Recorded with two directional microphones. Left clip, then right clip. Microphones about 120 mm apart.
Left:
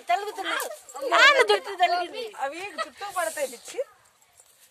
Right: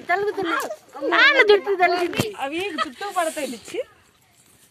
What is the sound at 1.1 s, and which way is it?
Speech, 20° left (ahead or behind).